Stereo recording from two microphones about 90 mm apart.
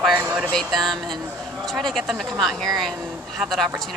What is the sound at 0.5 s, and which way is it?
Speech, 5° left (ahead or behind).